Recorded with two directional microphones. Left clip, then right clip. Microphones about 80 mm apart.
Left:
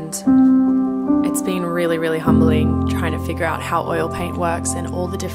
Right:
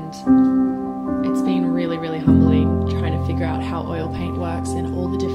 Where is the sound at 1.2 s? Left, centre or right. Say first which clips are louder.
Even; left.